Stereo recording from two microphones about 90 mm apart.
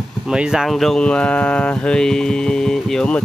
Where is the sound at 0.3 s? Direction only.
10° right (ahead or behind).